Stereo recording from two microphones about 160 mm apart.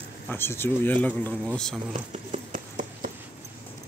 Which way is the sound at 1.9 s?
40° right (ahead or behind).